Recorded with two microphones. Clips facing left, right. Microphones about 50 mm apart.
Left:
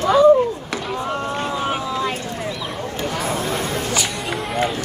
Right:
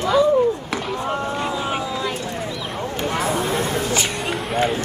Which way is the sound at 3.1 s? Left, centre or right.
Right.